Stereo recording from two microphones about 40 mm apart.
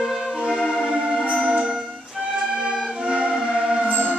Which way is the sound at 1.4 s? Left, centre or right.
Right.